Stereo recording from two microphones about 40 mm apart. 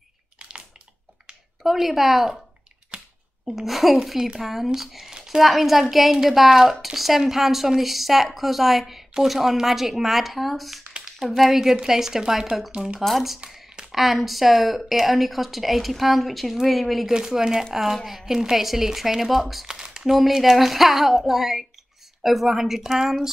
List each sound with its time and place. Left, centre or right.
0.4 s a sound: right
1.6 s a woman's voice: centre
2.9 s computer keyboard: right
3.4 s a woman's voice: centre
11.5 s a woman's voice: centre
17.1 s speech: centre
19.7 s a sound: centre
20.1 s speech: centre